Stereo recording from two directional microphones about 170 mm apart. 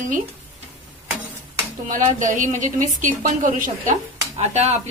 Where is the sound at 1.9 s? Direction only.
50° right (ahead or behind).